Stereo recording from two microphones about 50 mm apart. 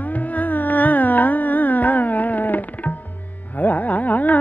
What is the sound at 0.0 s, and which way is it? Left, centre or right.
Carnatic music, left.